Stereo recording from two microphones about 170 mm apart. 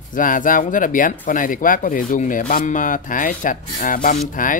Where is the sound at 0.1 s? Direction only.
50° left (ahead or behind).